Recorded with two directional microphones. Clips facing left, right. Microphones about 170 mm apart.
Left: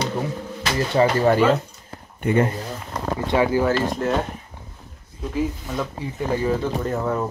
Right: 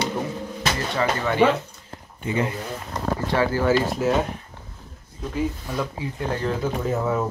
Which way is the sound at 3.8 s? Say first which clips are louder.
Even; 5° right (ahead or behind).